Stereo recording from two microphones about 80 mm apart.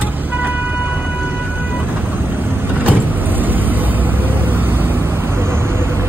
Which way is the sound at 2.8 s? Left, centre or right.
Right.